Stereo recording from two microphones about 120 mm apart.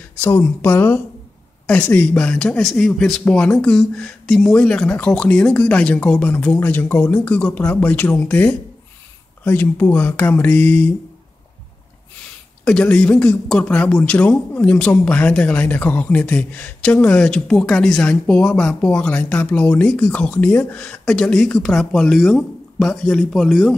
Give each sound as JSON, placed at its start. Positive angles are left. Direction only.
{"t": 0.2, "sound": "speech", "side_deg": 20}
{"t": 12.6, "sound": "speech", "side_deg": 10}